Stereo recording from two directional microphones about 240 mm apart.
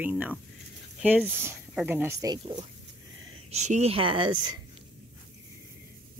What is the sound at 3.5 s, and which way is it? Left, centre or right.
Speech, right.